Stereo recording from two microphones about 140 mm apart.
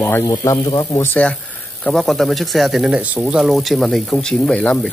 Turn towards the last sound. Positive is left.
turn(degrees=5)  # may be behind; listen again after turning